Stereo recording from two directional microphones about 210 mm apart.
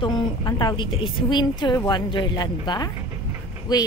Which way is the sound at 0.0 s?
20° left (ahead or behind).